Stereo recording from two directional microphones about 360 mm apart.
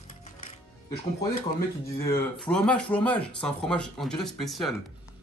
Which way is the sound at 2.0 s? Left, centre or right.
Centre.